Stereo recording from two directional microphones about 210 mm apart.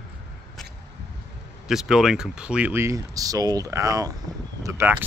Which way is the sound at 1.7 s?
Centre (ahead or behind).